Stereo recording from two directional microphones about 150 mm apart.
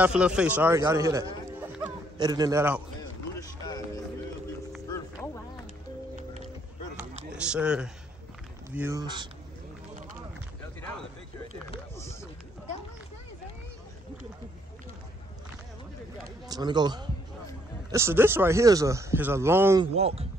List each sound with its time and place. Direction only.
0.0 s a man's voice: 5° right (ahead or behind); by 2.6 s 25° right (ahead or behind)
3.0 s a sound: 25° left (ahead or behind)
4.9 s music: 20° left (ahead or behind)
6.1 s music: 55° right (ahead or behind)
7.3 s speech: 5° right (ahead or behind)
9.0 s a man's voice: 30° right (ahead or behind)
12.0 s a sound: 20° left (ahead or behind)
16.4 s speech: 25° right (ahead or behind)
17.9 s speech: 15° right (ahead or behind)
19.9 s speech: 45° right (ahead or behind)